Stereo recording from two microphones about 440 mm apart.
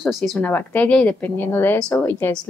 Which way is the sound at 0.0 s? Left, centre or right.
Centre.